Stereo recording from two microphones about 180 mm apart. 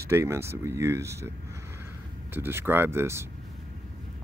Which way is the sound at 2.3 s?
10° right (ahead or behind).